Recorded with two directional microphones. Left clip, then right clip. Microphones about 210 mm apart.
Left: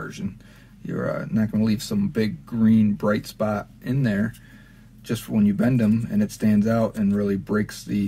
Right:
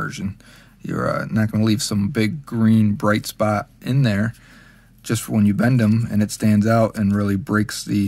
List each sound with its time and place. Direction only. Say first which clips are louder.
0.0 s speech: right 6 dB; 40° right (ahead or behind)